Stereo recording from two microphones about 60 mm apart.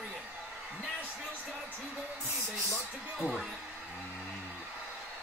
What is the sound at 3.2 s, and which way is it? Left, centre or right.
Speech, centre.